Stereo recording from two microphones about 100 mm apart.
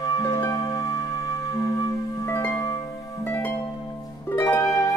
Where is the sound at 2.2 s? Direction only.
30° left (ahead or behind).